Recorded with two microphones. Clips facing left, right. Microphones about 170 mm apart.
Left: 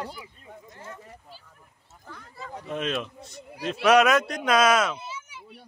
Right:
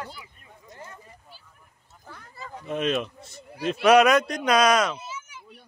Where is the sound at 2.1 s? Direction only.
Centre (ahead or behind).